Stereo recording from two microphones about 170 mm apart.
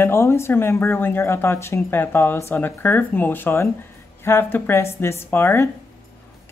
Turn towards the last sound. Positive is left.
turn(degrees=10)  # may be behind; listen again after turning